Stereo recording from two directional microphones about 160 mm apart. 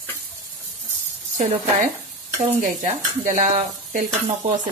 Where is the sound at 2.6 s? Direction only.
50° right (ahead or behind).